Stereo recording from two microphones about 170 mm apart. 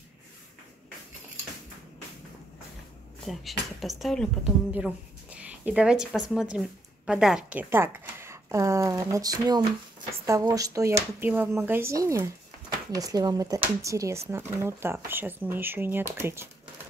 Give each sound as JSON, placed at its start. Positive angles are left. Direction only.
{"t": 3.3, "sound": "speech", "side_deg": 0}